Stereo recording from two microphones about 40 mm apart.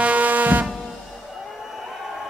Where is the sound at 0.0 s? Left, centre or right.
Right.